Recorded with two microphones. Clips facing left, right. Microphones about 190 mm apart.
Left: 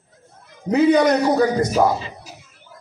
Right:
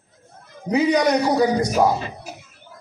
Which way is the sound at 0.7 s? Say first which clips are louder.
Left 3 dB; 15° right (ahead or behind).